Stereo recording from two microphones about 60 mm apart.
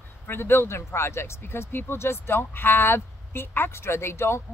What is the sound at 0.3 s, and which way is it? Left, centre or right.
Speech, left.